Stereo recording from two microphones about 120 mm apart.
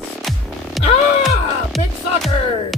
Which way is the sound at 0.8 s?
Centre (ahead or behind).